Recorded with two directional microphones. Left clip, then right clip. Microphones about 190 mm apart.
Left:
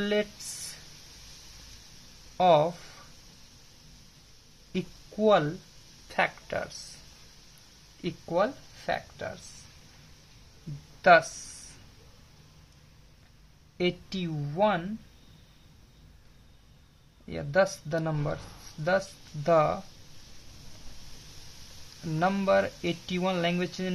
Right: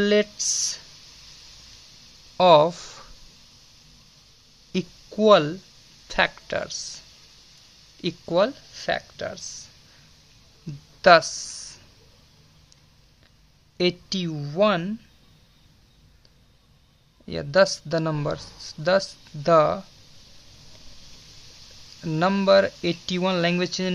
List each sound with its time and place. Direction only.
0.0 s speech: 50° right (ahead or behind)
2.3 s speech: 50° right (ahead or behind)
4.7 s speech: 55° right (ahead or behind)
6.0 s speech: 40° right (ahead or behind)
8.0 s speech: 55° right (ahead or behind)
11.0 s speech: 45° right (ahead or behind)
13.7 s speech: 50° right (ahead or behind)
17.3 s speech: 45° right (ahead or behind)
22.0 s speech: 45° right (ahead or behind)